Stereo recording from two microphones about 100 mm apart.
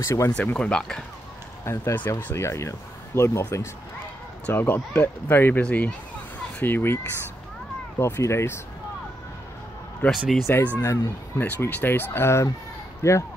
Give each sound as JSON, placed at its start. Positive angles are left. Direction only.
{"t": 0.0, "sound": "speech", "side_deg": 30}
{"t": 0.4, "sound": "speech", "side_deg": 10}
{"t": 1.6, "sound": "speech", "side_deg": 30}
{"t": 2.0, "sound": "speech", "side_deg": 20}
{"t": 8.0, "sound": "speech", "side_deg": 30}
{"t": 10.0, "sound": "speech", "side_deg": 15}